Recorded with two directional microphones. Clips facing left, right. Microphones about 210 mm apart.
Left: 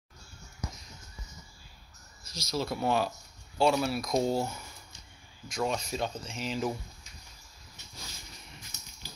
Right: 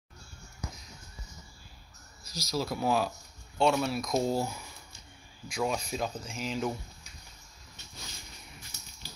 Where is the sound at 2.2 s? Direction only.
25° left (ahead or behind).